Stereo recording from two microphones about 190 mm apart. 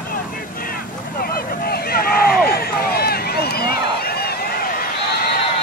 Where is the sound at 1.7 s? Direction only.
50° left (ahead or behind).